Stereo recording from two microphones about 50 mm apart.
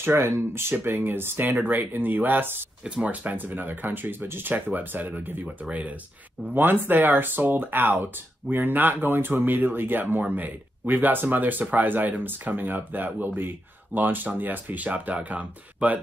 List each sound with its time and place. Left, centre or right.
0.0 s speech: right
0.7 s speech: right
1.6 s speech: right
2.8 s speech: centre
3.1 s speech: right
6.5 s speech: right